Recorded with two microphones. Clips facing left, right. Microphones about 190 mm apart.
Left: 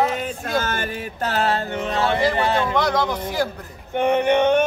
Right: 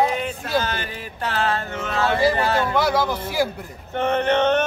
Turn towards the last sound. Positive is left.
turn(degrees=10)  # may be behind; listen again after turning